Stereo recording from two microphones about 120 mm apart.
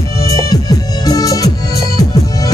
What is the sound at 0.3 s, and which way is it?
Music, 30° left (ahead or behind).